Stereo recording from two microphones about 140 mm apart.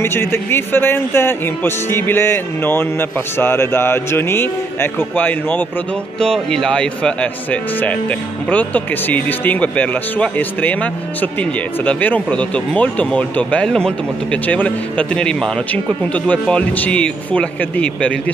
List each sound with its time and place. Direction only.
0.0 s speech: 15° left (ahead or behind)